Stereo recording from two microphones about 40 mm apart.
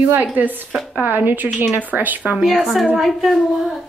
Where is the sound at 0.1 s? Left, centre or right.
Right.